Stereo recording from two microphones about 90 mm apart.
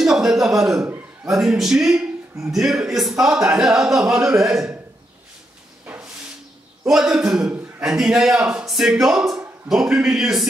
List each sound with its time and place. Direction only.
0.0 s a man's voice: 5° right (ahead or behind)
0.8 s a sound: 35° right (ahead or behind)
1.4 s a man's voice: 5° right (ahead or behind)
5.9 s hiss: 10° right (ahead or behind)
6.9 s speech: 10° right (ahead or behind)